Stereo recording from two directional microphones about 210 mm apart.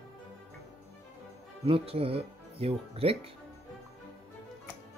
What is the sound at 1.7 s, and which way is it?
Speech, 25° right (ahead or behind).